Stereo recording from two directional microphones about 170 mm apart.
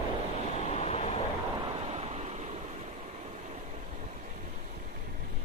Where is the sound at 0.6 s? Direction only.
40° left (ahead or behind).